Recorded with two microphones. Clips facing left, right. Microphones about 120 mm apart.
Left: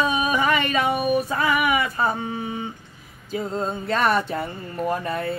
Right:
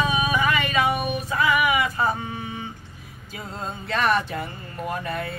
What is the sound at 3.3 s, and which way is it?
Speech, 35° left (ahead or behind).